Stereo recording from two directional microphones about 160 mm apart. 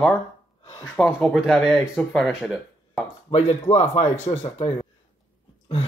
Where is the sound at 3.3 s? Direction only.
40° left (ahead or behind).